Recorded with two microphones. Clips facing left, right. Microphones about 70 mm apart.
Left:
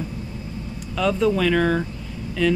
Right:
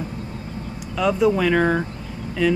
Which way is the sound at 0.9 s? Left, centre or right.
Centre.